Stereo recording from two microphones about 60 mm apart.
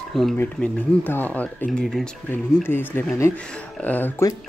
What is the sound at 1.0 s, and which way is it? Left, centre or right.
Speech, left.